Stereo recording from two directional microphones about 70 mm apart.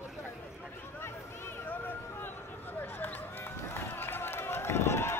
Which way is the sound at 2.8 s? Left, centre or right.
Left.